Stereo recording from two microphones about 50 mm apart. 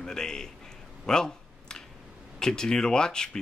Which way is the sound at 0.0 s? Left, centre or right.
Centre.